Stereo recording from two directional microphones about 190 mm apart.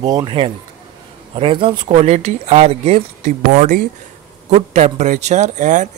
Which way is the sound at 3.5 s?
45° right (ahead or behind).